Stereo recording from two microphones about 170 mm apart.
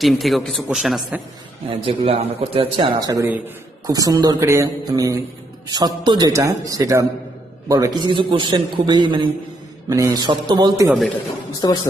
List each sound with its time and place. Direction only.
0.0 s a man's voice: centre (ahead or behind)
1.7 s speech: 35° right (ahead or behind)
3.0 s a man's voice: 20° right (ahead or behind)
11.6 s a woman's voice: 25° left (ahead or behind)